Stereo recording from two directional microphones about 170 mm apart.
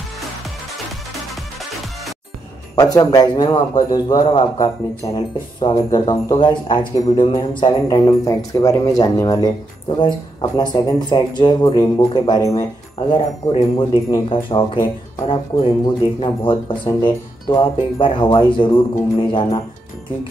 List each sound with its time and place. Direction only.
2.7 s speech: 20° left (ahead or behind)
13.1 s speech: 30° left (ahead or behind)